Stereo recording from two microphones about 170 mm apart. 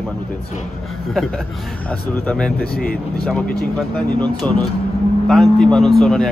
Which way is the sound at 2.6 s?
65° left (ahead or behind).